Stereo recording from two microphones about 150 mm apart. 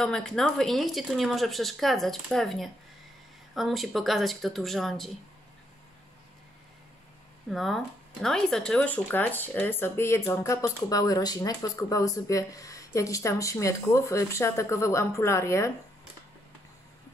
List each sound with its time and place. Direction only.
0.0 s speech: 5° left (ahead or behind)
7.4 s speech: centre (ahead or behind); by 15.7 s 20° left (ahead or behind)